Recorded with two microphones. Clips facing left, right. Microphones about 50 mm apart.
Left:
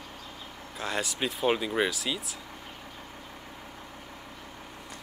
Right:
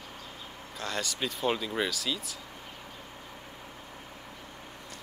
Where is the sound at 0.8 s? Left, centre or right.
Centre.